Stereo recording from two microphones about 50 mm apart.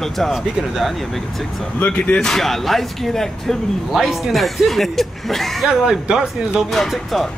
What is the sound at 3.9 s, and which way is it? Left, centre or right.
Speech, centre.